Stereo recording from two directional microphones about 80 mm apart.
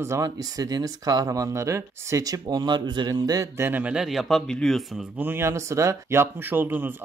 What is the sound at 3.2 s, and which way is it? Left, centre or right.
Speech, right.